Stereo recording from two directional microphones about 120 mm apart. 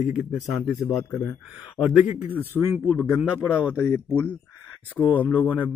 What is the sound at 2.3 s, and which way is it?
Speech, 20° left (ahead or behind).